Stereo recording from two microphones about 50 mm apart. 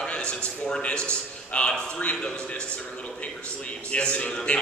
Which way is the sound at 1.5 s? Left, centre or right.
Left.